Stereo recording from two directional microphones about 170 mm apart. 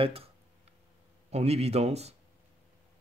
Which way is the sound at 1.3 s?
40° right (ahead or behind).